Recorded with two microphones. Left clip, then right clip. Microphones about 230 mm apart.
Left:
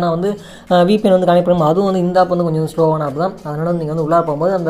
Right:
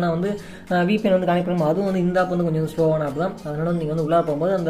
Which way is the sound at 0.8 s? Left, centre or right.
Left.